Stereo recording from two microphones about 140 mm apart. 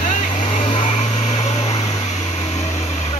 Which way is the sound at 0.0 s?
60° left (ahead or behind).